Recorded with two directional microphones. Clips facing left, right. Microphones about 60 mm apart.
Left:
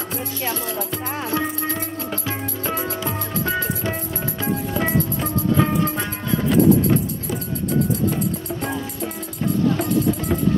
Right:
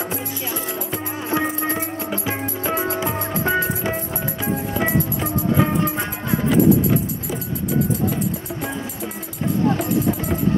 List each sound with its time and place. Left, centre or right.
0.5 s music: right